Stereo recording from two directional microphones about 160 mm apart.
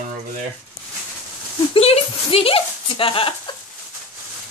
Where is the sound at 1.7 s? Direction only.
40° left (ahead or behind).